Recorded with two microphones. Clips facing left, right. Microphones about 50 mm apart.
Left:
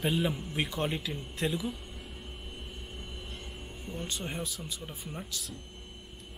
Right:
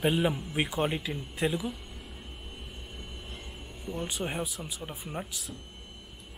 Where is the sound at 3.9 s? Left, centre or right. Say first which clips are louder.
Right 4 dB; centre.